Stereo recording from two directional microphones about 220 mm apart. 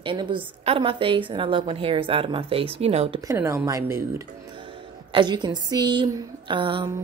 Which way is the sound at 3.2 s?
15° right (ahead or behind).